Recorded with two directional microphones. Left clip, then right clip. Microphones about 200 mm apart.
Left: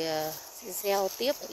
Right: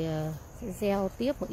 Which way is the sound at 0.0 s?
Centre (ahead or behind).